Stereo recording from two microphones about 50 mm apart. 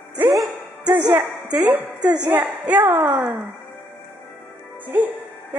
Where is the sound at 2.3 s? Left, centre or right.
Right.